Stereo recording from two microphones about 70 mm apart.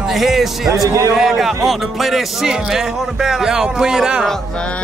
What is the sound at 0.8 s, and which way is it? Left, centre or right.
Speech, right.